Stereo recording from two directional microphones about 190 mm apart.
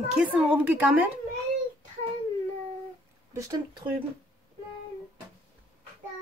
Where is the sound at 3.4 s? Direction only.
20° right (ahead or behind).